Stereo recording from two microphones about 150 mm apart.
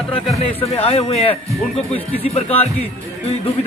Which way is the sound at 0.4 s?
40° left (ahead or behind).